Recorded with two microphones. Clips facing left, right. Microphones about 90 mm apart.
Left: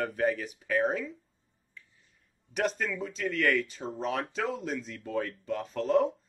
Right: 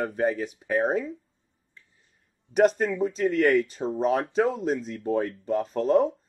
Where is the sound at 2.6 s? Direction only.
40° right (ahead or behind).